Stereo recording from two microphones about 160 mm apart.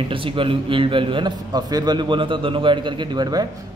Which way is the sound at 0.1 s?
35° right (ahead or behind).